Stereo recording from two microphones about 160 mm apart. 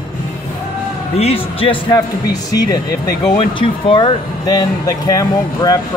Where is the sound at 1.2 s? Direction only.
40° left (ahead or behind).